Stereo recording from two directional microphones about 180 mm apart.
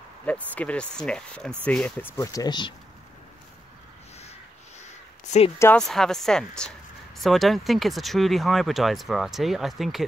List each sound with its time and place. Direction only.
0.3 s speech: 5° left (ahead or behind); by 2.7 s 25° left (ahead or behind)
4.2 s crow: 35° left (ahead or behind)
5.8 s speech: centre (ahead or behind)